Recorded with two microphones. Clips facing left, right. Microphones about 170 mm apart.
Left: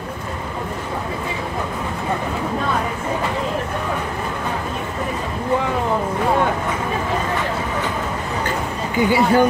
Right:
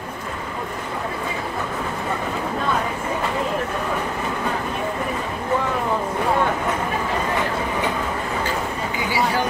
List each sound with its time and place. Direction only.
9.1 s speech: 55° left (ahead or behind)